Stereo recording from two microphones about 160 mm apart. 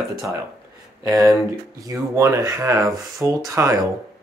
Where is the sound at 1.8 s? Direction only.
20° right (ahead or behind).